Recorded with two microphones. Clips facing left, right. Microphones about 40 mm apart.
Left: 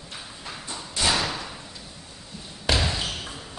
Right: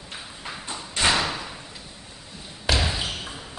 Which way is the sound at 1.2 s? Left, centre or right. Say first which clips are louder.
Right 1 dB; centre.